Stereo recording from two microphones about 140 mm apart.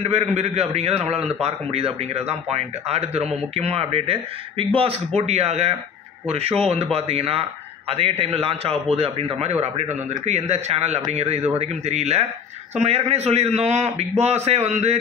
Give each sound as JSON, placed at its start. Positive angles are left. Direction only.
{"t": 0.0, "sound": "speech", "side_deg": -50}